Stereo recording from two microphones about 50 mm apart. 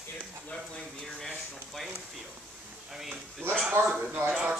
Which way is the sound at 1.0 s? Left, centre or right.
Centre.